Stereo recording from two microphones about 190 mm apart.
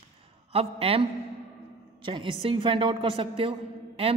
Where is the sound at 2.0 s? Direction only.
25° right (ahead or behind).